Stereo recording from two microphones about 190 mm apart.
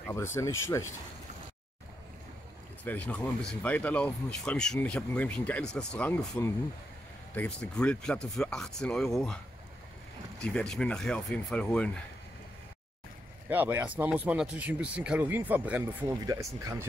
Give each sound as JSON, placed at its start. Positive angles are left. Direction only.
{"t": 0.0, "sound": "speech", "side_deg": 15}
{"t": 2.8, "sound": "speech", "side_deg": 10}
{"t": 10.4, "sound": "speech", "side_deg": 5}
{"t": 13.5, "sound": "speech", "side_deg": -10}